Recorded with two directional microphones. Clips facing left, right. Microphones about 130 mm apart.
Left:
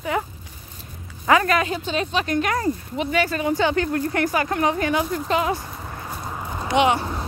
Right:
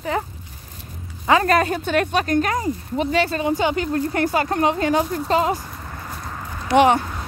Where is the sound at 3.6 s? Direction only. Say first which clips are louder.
Even; 20° right (ahead or behind); by 5.5 s 35° right (ahead or behind).